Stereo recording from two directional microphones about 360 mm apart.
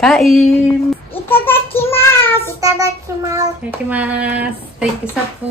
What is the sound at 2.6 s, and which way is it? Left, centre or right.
Child singing, centre.